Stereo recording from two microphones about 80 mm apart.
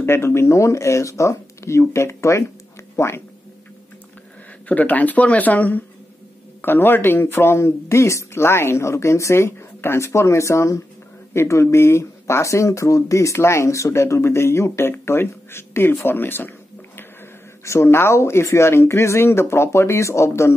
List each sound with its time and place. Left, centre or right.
0.0 s speech: left
4.6 s speech: centre; by 20.5 s left